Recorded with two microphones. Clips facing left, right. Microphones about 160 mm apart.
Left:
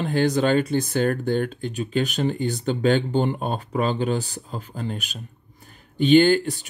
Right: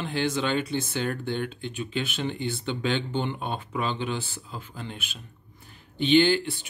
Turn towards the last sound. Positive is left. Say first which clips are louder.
# left 5 dB
turn(degrees=45)  # may be behind; listen again after turning